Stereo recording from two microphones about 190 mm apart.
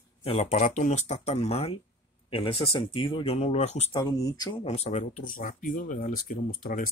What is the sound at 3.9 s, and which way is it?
Speech, 20° left (ahead or behind).